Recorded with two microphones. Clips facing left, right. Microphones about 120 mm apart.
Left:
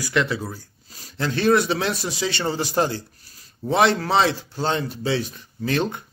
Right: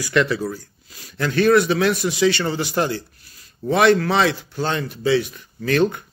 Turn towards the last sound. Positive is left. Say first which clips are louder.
# right 5 dB
turn(degrees=25)  # may be behind; listen again after turning